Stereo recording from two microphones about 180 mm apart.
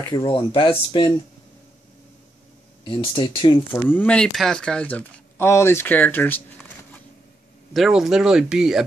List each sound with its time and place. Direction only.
0.1 s speech: 30° left (ahead or behind)
2.9 s speech: 30° left (ahead or behind)
3.7 s speech: 10° left (ahead or behind)
7.7 s speech: centre (ahead or behind)